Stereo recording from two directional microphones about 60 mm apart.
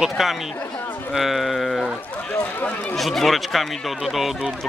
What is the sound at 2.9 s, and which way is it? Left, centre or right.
Speech, centre.